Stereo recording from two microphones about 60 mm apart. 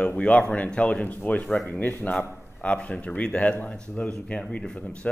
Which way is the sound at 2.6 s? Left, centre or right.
Left.